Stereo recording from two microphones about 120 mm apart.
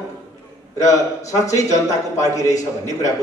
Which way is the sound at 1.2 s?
25° left (ahead or behind).